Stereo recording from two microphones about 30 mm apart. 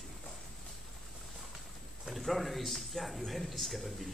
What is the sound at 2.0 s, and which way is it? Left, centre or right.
A man's voice, centre.